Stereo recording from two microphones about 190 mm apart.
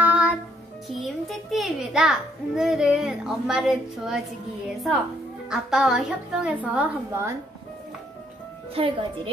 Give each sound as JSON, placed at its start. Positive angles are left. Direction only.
{"t": 0.0, "sound": "music", "side_deg": -10}
{"t": 0.8, "sound": "a child's voice", "side_deg": 0}
{"t": 5.5, "sound": "a woman's voice", "side_deg": -5}
{"t": 8.7, "sound": "a woman's voice", "side_deg": -25}